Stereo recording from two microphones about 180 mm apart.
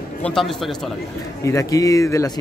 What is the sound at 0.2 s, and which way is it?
Speech, 5° left (ahead or behind).